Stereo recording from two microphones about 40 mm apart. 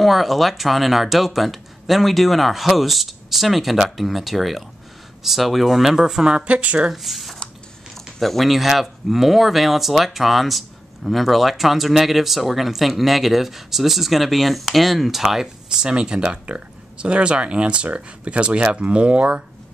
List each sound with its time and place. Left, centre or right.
0.0 s speech: centre
6.3 s speech: right
6.9 s speech: centre
15.8 s speech: right